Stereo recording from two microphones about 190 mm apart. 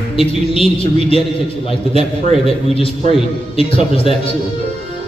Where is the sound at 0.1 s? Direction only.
30° left (ahead or behind).